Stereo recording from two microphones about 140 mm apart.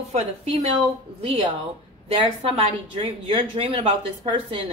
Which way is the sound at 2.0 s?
45° right (ahead or behind).